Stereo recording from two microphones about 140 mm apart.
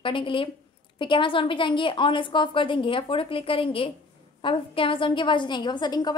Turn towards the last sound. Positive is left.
turn(degrees=30)  # may be behind; listen again after turning